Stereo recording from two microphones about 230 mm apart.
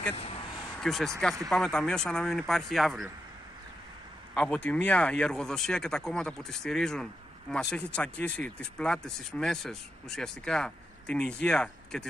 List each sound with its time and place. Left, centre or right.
0.1 s speech: left
0.7 s speech: centre
4.3 s speech: centre